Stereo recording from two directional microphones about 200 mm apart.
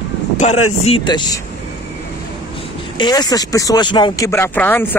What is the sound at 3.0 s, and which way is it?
Speech, 20° left (ahead or behind).